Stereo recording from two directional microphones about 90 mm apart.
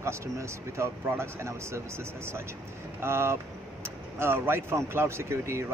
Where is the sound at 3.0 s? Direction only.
30° right (ahead or behind).